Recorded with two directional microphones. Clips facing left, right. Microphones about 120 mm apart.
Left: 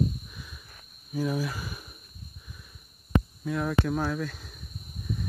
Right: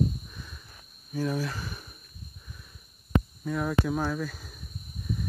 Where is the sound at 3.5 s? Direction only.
Centre (ahead or behind).